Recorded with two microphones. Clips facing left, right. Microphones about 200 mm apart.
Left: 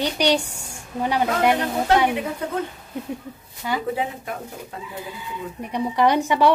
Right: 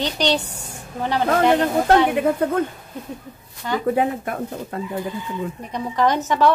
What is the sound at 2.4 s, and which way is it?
Speech, 55° right (ahead or behind).